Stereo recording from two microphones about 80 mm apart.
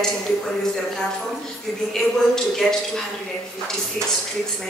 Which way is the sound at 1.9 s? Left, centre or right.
Centre.